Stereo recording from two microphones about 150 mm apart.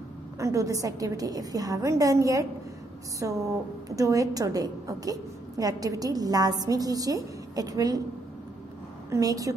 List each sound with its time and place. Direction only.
0.4 s a woman's voice: 20° right (ahead or behind)
9.1 s a woman's voice: 25° right (ahead or behind)